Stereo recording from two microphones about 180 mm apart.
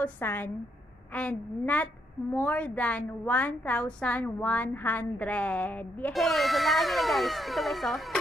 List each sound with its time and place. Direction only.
0.0 s a woman's voice: 10° left (ahead or behind)